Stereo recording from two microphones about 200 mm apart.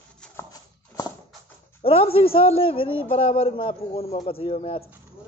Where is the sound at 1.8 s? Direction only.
30° left (ahead or behind).